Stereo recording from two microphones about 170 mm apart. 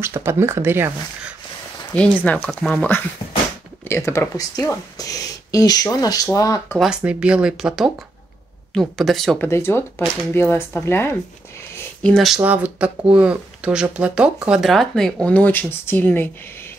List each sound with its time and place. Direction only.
0.0 s speech: 15° right (ahead or behind)
2.2 s speech: 5° left (ahead or behind)
6.8 s speech: 5° right (ahead or behind)
9.5 s speech: 15° left (ahead or behind)
12.0 s speech: centre (ahead or behind)
12.4 s speech: 10° right (ahead or behind); by 16.3 s 10° left (ahead or behind)